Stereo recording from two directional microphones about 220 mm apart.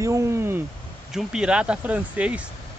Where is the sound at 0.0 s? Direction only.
15° right (ahead or behind).